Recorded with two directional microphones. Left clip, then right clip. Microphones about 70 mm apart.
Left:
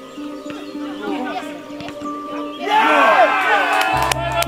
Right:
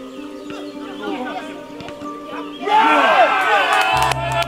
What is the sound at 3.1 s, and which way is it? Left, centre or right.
Music, right.